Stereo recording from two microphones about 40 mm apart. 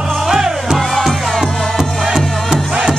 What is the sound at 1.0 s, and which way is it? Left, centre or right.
Music, centre.